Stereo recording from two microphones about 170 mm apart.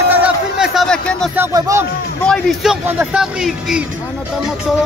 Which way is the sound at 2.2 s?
5° left (ahead or behind).